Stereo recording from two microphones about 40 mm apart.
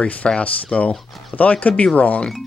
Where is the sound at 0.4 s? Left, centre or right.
Left.